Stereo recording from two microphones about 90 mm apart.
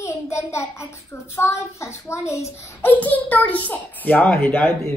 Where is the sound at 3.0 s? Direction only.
15° left (ahead or behind).